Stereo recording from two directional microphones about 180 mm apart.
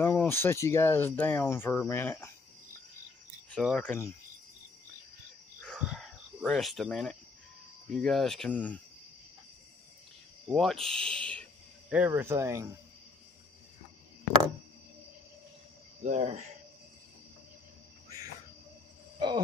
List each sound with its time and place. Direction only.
0.0 s speech: 15° left (ahead or behind)
3.4 s speech: 5° left (ahead or behind)
5.6 s cricket: 5° left (ahead or behind)
7.9 s speech: centre (ahead or behind)
10.5 s speech: centre (ahead or behind)
11.9 s speech: 10° right (ahead or behind)
16.0 s speech: 40° right (ahead or behind)
19.1 s a sound: 25° right (ahead or behind)